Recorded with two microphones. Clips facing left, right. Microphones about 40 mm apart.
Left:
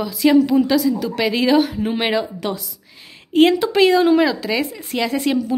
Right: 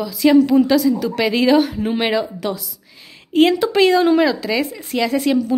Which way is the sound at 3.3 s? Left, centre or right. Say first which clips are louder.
Even; centre.